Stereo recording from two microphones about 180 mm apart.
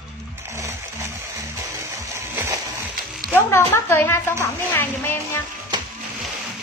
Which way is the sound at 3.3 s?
15° left (ahead or behind).